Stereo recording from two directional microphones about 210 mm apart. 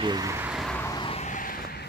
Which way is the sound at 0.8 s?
20° left (ahead or behind).